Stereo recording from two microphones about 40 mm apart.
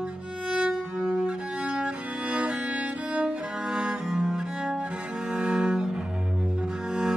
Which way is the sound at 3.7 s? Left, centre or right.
Centre.